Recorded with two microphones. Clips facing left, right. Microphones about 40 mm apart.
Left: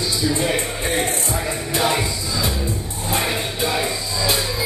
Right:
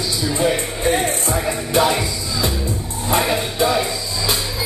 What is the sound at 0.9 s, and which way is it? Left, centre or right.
Music, centre.